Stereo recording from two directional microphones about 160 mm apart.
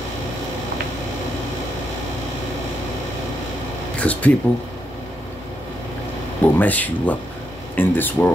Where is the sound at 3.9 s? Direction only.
10° left (ahead or behind).